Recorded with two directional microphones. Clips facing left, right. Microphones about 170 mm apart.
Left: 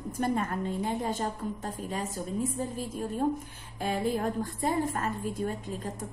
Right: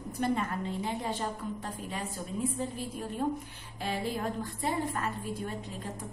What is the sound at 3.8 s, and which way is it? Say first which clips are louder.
A woman's voice: left 4 dB; 50° left (ahead or behind).